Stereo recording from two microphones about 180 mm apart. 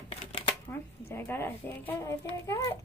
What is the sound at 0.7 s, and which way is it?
A child's voice, 10° left (ahead or behind).